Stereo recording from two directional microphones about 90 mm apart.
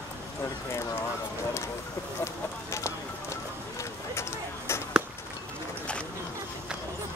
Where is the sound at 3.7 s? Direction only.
30° left (ahead or behind).